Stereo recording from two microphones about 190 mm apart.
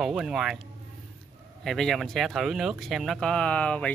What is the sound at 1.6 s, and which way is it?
Speech, centre (ahead or behind).